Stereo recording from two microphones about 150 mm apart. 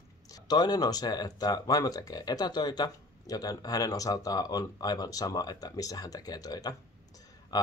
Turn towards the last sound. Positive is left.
turn(degrees=25)  # may be behind; listen again after turning